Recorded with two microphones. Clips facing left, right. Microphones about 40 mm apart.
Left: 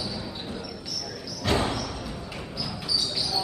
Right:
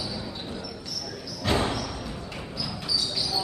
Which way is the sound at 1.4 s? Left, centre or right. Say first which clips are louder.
Even; centre.